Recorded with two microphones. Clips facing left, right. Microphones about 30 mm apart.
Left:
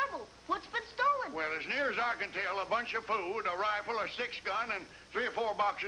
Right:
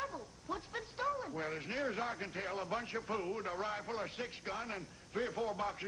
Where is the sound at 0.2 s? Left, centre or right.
Left.